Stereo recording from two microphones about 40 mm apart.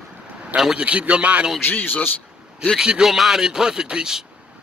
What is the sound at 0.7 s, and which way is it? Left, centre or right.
Speech, right.